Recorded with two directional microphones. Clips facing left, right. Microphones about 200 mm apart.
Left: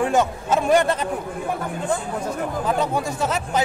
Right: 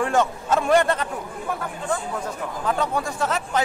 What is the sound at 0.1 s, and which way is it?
Speech, 20° left (ahead or behind).